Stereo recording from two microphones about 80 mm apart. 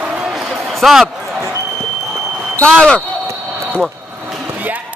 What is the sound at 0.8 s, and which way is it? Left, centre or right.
Speech, centre.